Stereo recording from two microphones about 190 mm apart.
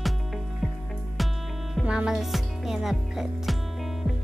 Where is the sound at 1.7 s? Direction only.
5° right (ahead or behind).